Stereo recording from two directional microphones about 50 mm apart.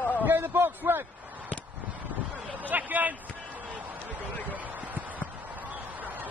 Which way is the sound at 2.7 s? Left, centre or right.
Right.